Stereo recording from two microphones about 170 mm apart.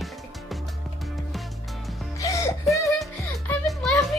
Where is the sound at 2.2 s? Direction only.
20° left (ahead or behind).